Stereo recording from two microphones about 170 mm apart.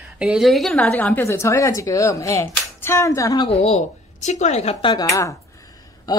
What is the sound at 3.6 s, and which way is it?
Speech, 40° left (ahead or behind).